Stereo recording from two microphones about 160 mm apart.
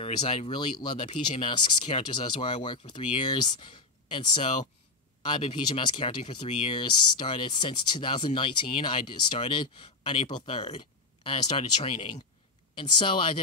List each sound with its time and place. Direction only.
0.0 s speech: 35° left (ahead or behind)